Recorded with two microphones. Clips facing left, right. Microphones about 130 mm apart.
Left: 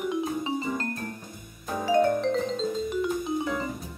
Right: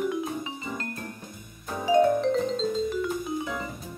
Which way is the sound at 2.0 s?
Centre (ahead or behind).